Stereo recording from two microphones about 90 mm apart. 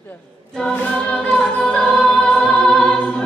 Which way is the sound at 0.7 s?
15° left (ahead or behind).